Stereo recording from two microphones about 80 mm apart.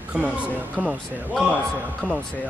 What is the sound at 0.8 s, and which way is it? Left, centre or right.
Music, centre.